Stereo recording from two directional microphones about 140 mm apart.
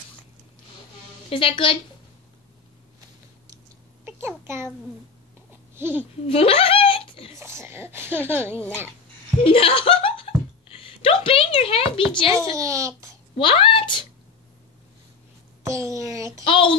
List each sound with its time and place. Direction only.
1.3 s a woman's voice: 40° left (ahead or behind)
5.8 s a child's voice: 15° right (ahead or behind)
6.2 s a sound: 45° left (ahead or behind)
7.3 s speech: 20° right (ahead or behind)
9.4 s speech: 40° left (ahead or behind)
12.5 s a child's voice: 25° right (ahead or behind)
13.4 s speech: 35° left (ahead or behind)
15.6 s a child's voice: 20° right (ahead or behind)
16.4 s speech: 40° left (ahead or behind)